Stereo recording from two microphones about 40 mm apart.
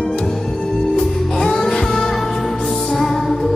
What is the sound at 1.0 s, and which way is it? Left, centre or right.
Music, centre.